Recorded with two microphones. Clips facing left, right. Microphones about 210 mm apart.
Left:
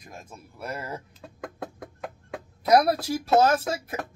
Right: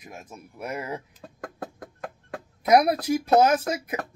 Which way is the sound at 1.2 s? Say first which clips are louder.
Even; centre (ahead or behind).